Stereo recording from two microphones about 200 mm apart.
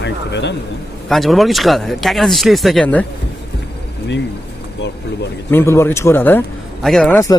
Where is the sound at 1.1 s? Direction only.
Centre (ahead or behind).